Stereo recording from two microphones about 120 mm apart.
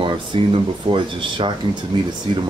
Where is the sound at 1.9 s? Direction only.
35° right (ahead or behind).